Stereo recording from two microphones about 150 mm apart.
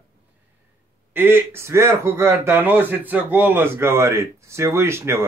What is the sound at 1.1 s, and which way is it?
A man's voice, 15° right (ahead or behind).